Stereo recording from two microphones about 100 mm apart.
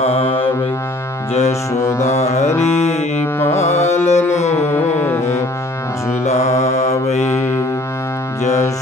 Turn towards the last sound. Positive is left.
turn(degrees=90)